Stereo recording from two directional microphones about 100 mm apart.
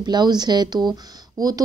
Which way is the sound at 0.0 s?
45° right (ahead or behind).